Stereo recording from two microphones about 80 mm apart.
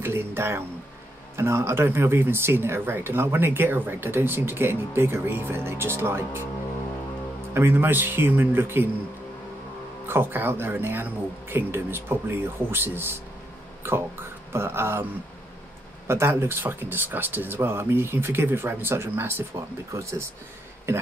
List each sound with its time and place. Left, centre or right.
0.0 s speech: right
7.5 s speech: right
10.0 s speech: right
14.5 s music: right
16.1 s speech: right
19.9 s music: right